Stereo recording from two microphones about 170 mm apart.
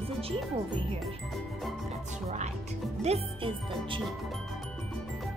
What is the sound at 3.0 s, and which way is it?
Music, 35° right (ahead or behind).